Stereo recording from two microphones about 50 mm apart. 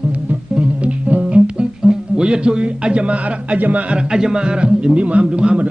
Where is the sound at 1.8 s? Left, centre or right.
Centre; by 3.9 s right.